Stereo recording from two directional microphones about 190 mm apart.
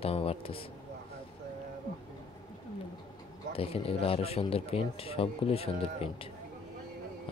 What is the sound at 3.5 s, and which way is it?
Speech, 30° left (ahead or behind).